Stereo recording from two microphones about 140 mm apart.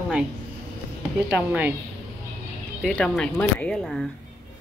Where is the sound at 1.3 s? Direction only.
10° right (ahead or behind).